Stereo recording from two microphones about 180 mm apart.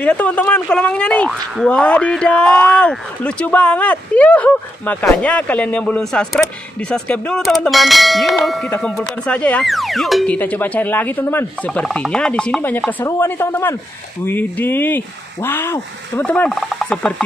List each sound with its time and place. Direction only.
0.0 s speech: 10° left (ahead or behind)